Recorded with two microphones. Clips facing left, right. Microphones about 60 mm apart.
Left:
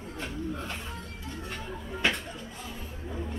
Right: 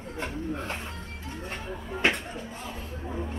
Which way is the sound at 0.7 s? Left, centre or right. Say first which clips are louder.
Right 3 dB; right.